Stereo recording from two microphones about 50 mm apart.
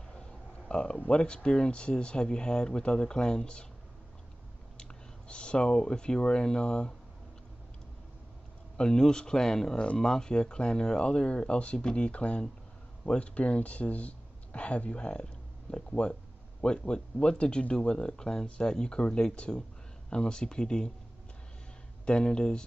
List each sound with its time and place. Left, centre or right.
0.7 s speech: centre
5.3 s speech: centre
8.7 s speech: centre
22.0 s speech: centre